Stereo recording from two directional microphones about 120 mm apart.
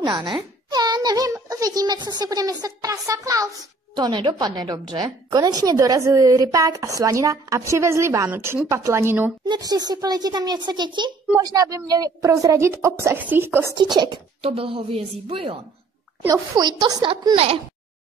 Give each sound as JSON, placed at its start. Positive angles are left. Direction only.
{"t": 0.0, "sound": "a child's voice", "side_deg": -35}
{"t": 0.7, "sound": "a sound", "side_deg": -35}
{"t": 3.9, "sound": "a woman's voice", "side_deg": -35}
{"t": 9.5, "sound": "a woman's voice", "side_deg": -35}
{"t": 13.7, "sound": "a woman's voice", "side_deg": -35}
{"t": 14.4, "sound": "a woman's voice", "side_deg": -50}
{"t": 16.3, "sound": "a woman's voice", "side_deg": -30}